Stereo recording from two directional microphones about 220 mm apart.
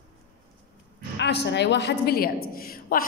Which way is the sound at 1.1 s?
50° left (ahead or behind).